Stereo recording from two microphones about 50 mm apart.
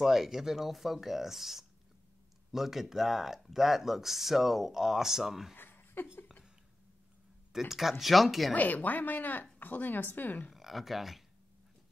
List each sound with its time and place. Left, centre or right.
0.0 s speech: centre
5.6 s a sound: left
7.5 s speech: centre
8.5 s speech: left
10.5 s speech: centre